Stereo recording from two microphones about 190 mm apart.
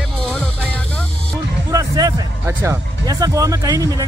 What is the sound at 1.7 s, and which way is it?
Speech, 20° right (ahead or behind).